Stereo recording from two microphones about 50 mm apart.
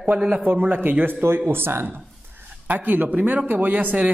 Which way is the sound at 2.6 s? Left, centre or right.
Right.